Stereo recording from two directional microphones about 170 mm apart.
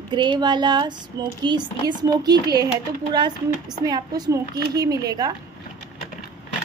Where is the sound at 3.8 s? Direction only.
20° right (ahead or behind).